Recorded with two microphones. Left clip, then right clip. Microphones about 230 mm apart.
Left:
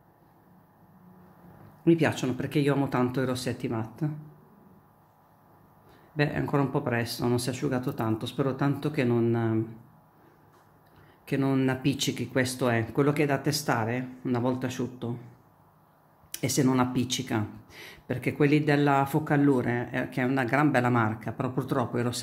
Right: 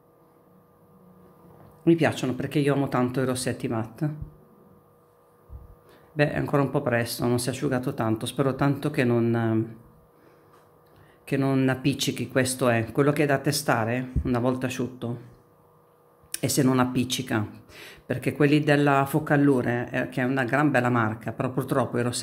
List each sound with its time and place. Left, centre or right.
1.9 s speech: centre
6.1 s speech: centre
11.2 s speech: centre
16.3 s speech: centre